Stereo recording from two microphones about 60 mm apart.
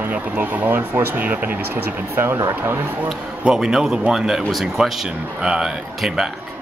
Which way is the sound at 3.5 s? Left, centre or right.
Centre.